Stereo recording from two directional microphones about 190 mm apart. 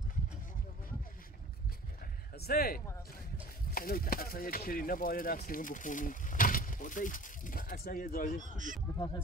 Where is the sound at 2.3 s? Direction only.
55° left (ahead or behind).